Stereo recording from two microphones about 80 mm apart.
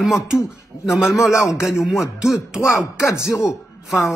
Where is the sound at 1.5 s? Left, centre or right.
Centre.